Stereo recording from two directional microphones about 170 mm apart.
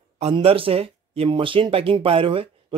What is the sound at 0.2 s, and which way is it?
Speech, 35° right (ahead or behind).